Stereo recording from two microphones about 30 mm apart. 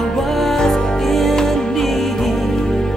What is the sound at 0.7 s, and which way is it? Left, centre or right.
Music, centre.